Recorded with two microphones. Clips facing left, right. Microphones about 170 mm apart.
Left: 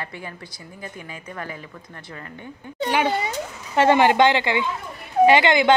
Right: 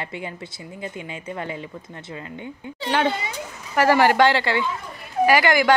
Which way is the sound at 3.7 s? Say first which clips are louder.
Left 1 dB; 20° left (ahead or behind).